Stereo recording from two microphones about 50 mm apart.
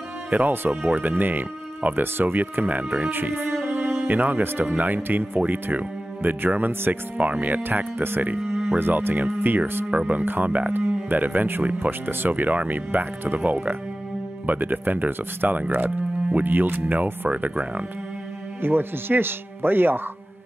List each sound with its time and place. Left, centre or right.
0.3 s speech: right
3.0 s speech: right
3.6 s music: right
4.0 s speech: right
6.9 s speech: right
8.4 s a sound: centre
8.7 s speech: right
9.8 s speech: right
18.6 s speech: right